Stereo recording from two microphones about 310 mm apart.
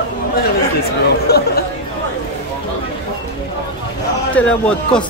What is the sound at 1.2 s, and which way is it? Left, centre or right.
Speech, left.